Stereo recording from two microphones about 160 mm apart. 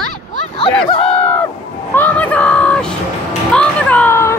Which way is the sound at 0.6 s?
40° left (ahead or behind).